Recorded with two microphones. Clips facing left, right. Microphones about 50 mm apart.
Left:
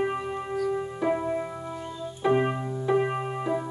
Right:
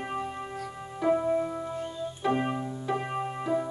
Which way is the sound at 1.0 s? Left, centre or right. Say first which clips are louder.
Right 3 dB; centre.